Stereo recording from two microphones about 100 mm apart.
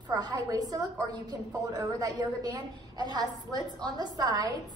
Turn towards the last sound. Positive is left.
turn(degrees=-45)  # may be behind; listen again after turning